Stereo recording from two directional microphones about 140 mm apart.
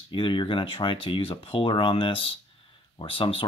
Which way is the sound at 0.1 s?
35° left (ahead or behind).